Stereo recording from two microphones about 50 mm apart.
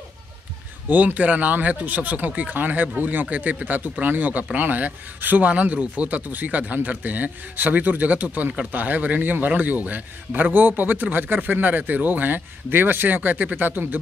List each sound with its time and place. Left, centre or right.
0.8 s speech: right